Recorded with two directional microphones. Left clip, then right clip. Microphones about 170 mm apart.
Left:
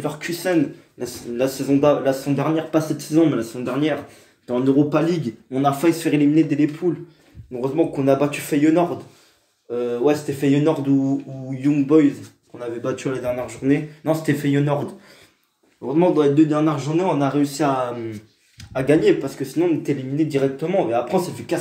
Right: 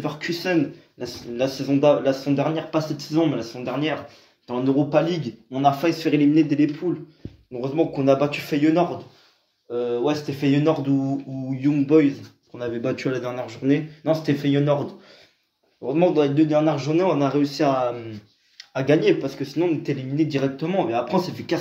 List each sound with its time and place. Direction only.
0.0 s speech: 5° right (ahead or behind)
13.5 s speech: 5° right (ahead or behind)
15.9 s speech: 15° right (ahead or behind)